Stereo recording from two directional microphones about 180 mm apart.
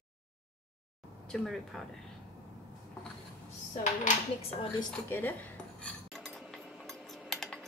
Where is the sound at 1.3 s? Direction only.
Centre (ahead or behind).